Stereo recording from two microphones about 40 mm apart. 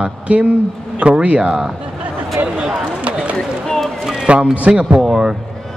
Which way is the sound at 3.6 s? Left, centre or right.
Centre.